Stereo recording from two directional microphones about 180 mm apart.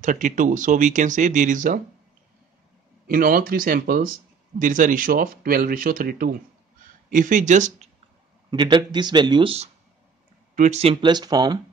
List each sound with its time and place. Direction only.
0.0 s speech: 45° right (ahead or behind)
3.1 s speech: 55° right (ahead or behind)
8.5 s speech: 25° right (ahead or behind)
10.5 s speech: 40° right (ahead or behind); by 11.6 s 20° right (ahead or behind)